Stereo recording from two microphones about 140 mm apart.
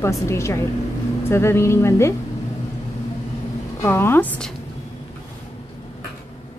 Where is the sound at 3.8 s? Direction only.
15° left (ahead or behind).